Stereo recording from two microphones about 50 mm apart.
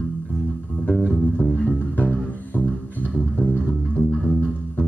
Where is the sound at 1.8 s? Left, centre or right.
Left.